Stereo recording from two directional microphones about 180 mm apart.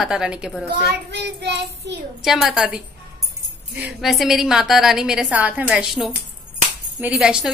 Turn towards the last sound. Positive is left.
turn(degrees=-5)  # may be behind; listen again after turning